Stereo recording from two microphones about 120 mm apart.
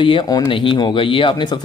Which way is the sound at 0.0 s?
45° left (ahead or behind).